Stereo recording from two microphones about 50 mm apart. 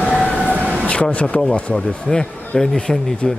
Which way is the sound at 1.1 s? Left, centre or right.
Left.